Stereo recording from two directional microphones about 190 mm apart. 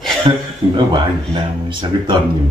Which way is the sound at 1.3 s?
25° right (ahead or behind).